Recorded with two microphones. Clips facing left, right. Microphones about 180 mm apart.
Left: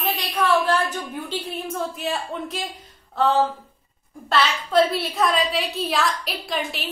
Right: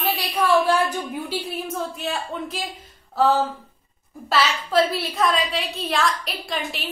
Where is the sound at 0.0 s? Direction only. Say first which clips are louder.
Right 1 dB; 5° right (ahead or behind).